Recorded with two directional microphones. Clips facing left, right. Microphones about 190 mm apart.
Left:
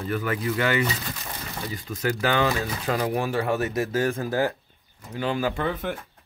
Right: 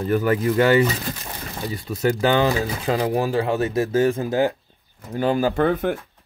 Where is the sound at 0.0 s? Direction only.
40° right (ahead or behind); by 4.6 s 20° right (ahead or behind).